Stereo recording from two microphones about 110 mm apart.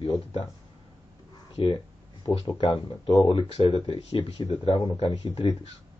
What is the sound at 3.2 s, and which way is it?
Speech, 60° left (ahead or behind).